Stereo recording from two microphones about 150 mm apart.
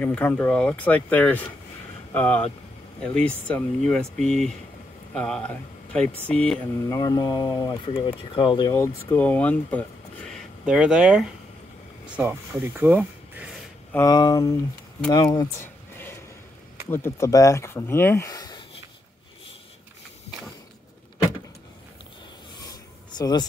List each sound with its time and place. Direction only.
0.0 s speech: 10° left (ahead or behind)
6.9 s speech: 25° left (ahead or behind)
8.7 s speech: 15° left (ahead or behind)
10.3 s speech: 5° right (ahead or behind)
13.9 s speech: 25° left (ahead or behind)
15.6 s a sound: 15° left (ahead or behind)
16.9 s speech: 15° left (ahead or behind)
22.7 s filing: 25° left (ahead or behind)